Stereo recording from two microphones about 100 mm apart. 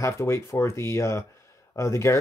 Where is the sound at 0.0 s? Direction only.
30° left (ahead or behind).